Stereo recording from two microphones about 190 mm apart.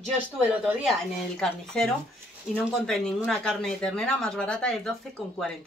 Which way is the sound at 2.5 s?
5° left (ahead or behind).